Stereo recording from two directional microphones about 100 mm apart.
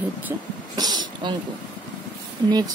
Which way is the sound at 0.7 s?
45° right (ahead or behind).